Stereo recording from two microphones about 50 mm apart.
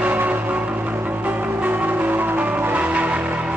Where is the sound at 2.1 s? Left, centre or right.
Right.